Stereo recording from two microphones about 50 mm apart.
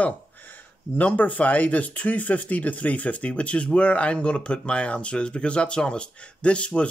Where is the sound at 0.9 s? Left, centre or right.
Left.